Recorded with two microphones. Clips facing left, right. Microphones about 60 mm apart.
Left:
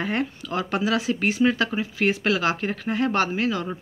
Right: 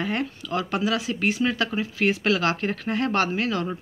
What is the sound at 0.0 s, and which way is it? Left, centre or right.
Speech, left.